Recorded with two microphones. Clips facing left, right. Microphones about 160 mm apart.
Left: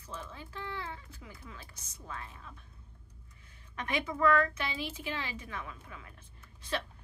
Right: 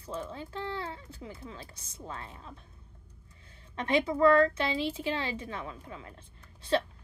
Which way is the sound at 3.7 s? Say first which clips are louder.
Right 7 dB; 30° right (ahead or behind).